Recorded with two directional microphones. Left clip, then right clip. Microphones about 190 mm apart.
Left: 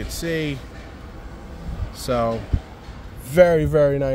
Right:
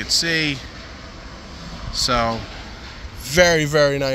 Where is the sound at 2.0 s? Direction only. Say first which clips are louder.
Right 2 dB; 15° left (ahead or behind).